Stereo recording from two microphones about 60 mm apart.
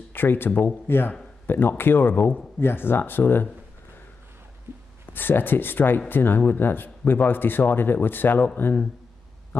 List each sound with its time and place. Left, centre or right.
0.1 s speech: left
5.0 s speech: left